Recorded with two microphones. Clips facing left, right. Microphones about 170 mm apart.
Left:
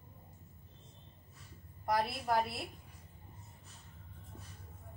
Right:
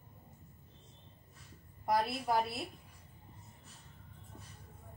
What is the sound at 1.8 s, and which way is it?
Speech, centre (ahead or behind).